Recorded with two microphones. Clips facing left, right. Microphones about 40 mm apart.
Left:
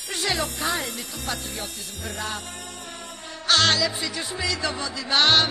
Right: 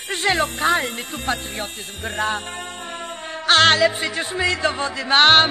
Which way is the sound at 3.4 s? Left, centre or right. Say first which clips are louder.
Right 6 dB; right.